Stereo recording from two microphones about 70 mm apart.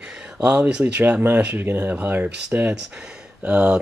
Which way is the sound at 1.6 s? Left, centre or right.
Right.